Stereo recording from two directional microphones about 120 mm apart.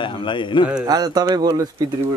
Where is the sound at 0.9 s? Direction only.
35° right (ahead or behind).